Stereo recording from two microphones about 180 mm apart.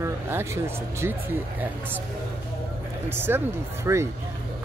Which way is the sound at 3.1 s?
10° right (ahead or behind).